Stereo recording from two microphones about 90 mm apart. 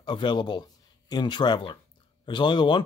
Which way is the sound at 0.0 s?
55° left (ahead or behind).